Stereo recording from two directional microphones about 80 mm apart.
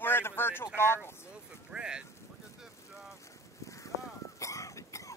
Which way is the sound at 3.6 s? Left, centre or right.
Left.